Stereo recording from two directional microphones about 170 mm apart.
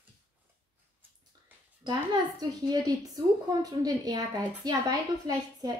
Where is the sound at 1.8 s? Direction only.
25° right (ahead or behind).